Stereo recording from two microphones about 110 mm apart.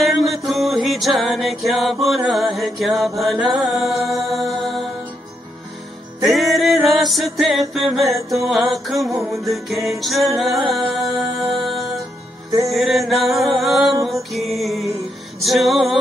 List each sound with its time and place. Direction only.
0.0 s music: centre (ahead or behind)
6.2 s music: centre (ahead or behind)
8.1 s music: 30° right (ahead or behind)
8.5 s music: centre (ahead or behind)